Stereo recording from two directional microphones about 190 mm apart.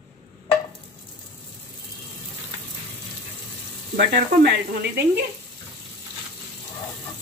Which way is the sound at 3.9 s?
60° right (ahead or behind).